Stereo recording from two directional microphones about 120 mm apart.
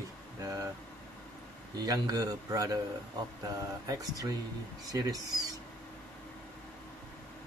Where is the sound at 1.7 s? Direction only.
30° right (ahead or behind).